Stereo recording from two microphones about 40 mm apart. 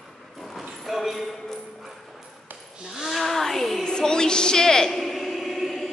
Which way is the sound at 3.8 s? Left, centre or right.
Centre.